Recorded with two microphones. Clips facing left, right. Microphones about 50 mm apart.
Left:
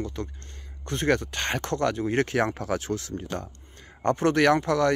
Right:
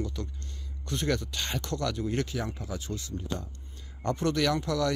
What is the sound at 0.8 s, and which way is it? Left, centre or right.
Speech, left.